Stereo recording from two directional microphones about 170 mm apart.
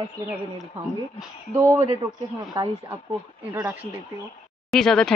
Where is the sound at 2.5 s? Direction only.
20° right (ahead or behind).